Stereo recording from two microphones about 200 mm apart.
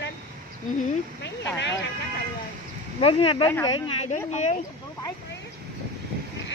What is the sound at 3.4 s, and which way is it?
Speech, 10° left (ahead or behind).